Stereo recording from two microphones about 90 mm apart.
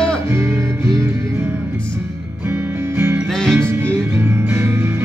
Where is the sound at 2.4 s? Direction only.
25° right (ahead or behind).